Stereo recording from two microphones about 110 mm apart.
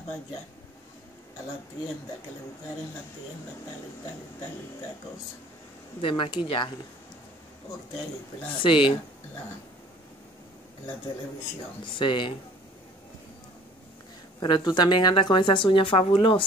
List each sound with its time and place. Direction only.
5.9 s a woman's voice: 55° left (ahead or behind)
8.5 s a woman's voice: 50° left (ahead or behind)
11.8 s a woman's voice: 50° left (ahead or behind)
14.4 s a woman's voice: 40° left (ahead or behind)